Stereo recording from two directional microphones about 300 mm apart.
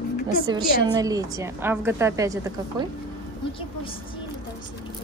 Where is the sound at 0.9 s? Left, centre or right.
Centre.